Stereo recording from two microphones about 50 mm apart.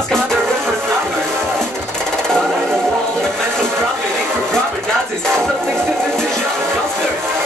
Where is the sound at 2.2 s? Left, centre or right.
Centre.